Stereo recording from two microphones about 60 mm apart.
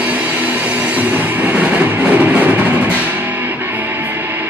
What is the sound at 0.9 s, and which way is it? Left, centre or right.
Music, right.